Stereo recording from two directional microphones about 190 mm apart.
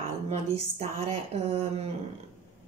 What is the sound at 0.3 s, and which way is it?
Speech, 35° right (ahead or behind).